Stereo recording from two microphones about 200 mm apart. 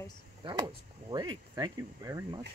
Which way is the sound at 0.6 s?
20° right (ahead or behind).